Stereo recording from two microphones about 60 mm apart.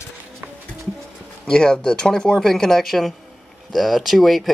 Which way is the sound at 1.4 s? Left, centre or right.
Centre.